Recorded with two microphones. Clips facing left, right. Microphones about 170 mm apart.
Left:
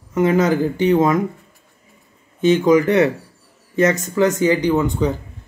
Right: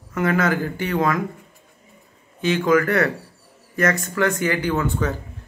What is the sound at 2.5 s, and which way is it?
Speech, 20° left (ahead or behind).